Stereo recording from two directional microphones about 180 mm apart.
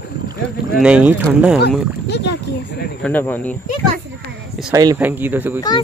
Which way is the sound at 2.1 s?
70° left (ahead or behind).